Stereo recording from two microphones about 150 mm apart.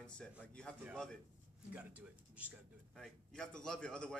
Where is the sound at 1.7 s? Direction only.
10° right (ahead or behind).